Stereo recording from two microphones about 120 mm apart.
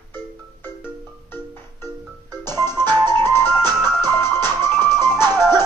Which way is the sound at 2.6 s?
20° left (ahead or behind).